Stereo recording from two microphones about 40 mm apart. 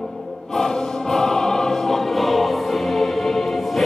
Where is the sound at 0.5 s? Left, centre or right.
Centre.